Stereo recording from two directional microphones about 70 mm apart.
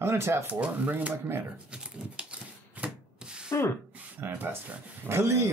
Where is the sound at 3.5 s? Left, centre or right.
Left.